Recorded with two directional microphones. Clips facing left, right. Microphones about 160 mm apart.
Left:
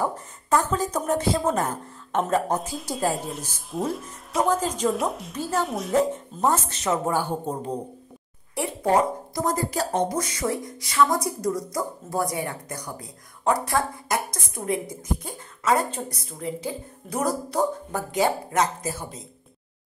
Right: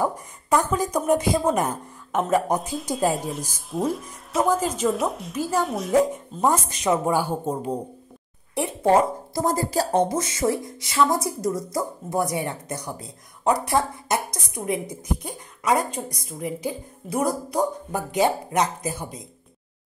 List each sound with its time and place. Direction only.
0.0 s speech: 15° right (ahead or behind)
2.7 s speech: centre (ahead or behind)
5.9 s speech: 10° right (ahead or behind)
9.3 s speech: 30° right (ahead or behind)